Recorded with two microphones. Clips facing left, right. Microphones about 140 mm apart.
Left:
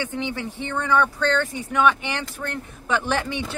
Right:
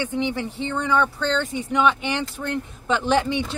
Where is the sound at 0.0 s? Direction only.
15° right (ahead or behind).